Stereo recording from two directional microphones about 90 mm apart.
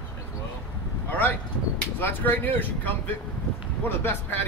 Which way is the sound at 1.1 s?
20° left (ahead or behind).